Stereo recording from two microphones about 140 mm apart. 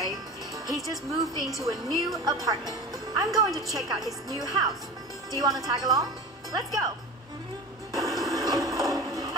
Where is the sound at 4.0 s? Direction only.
25° left (ahead or behind).